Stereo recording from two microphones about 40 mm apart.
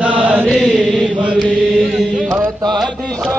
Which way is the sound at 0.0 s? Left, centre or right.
Right.